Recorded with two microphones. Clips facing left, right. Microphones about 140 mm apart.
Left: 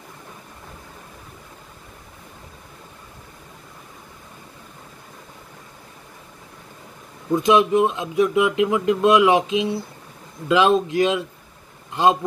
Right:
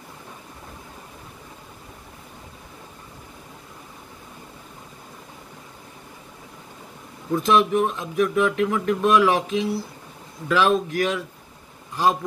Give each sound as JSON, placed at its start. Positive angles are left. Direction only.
{"t": 7.3, "sound": "speech", "side_deg": 20}